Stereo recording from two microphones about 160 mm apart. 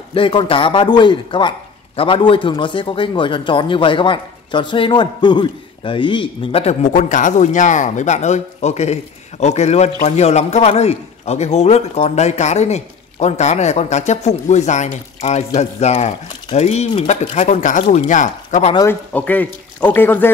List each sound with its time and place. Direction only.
0.1 s a man's voice: 30° left (ahead or behind); by 18.7 s 50° left (ahead or behind)
18.9 s speech: 10° left (ahead or behind)